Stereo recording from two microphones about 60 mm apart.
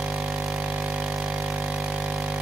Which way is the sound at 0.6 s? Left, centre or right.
Right.